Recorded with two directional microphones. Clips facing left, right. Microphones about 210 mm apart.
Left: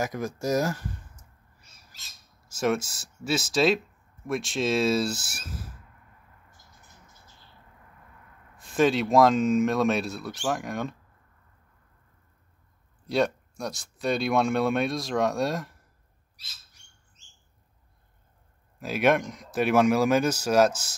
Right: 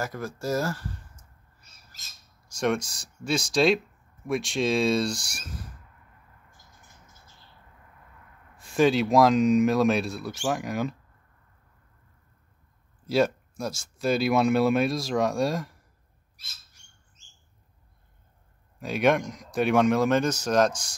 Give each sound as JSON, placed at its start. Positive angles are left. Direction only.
{"t": 0.0, "sound": "speech", "side_deg": 15}
{"t": 2.4, "sound": "speech", "side_deg": 5}
{"t": 8.5, "sound": "speech", "side_deg": 0}
{"t": 13.0, "sound": "speech", "side_deg": 0}
{"t": 18.8, "sound": "speech", "side_deg": 5}